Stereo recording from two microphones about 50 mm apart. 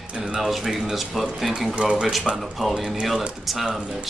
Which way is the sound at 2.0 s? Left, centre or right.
Centre.